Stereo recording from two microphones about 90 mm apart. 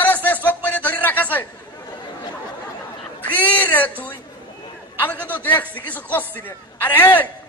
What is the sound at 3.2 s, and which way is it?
Speech, 20° left (ahead or behind).